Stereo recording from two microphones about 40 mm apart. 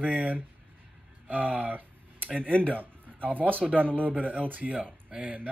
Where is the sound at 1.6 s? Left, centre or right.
Right.